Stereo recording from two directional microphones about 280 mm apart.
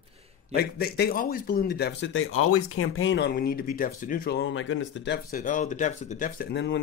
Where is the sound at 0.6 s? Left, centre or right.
Left.